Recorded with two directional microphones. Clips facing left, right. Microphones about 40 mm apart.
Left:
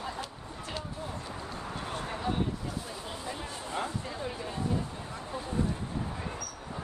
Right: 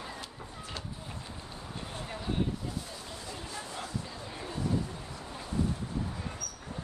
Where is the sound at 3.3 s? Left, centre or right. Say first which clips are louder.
Left 2 dB; left.